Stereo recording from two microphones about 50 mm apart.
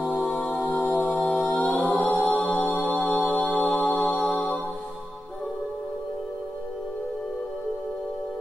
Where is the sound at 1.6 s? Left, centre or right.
Left.